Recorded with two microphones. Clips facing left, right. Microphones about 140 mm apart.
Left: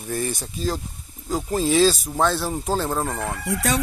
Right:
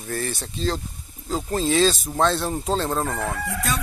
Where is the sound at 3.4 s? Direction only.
85° left.